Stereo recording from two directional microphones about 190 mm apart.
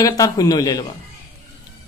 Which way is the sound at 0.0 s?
20° left (ahead or behind).